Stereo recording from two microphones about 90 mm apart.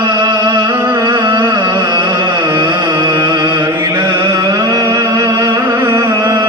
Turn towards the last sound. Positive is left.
turn(degrees=-35)  # may be behind; listen again after turning